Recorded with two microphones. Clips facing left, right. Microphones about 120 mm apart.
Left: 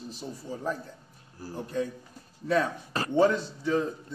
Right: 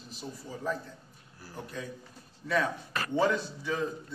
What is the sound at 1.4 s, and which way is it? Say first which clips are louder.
Speech: left 9 dB; 40° left (ahead or behind).